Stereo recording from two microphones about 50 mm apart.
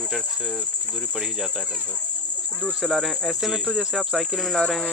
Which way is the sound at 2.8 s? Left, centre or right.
Centre.